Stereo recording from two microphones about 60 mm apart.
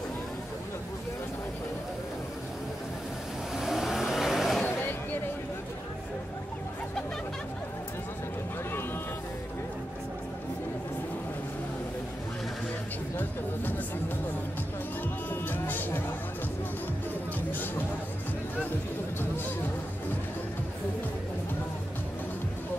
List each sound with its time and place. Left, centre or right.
3.5 s vehicle: centre
4.6 s a sound: left
15.4 s music: left
17.5 s music: left